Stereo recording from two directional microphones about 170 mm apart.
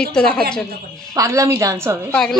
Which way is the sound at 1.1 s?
20° right (ahead or behind).